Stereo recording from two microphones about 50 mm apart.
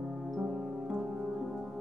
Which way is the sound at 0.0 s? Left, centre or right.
Centre.